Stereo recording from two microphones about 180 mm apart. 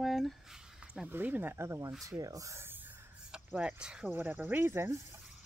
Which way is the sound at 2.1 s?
20° right (ahead or behind).